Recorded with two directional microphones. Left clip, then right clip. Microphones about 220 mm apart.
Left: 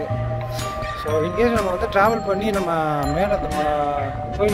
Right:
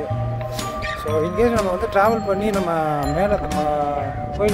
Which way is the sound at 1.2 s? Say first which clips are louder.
Right 2 dB; 10° right (ahead or behind).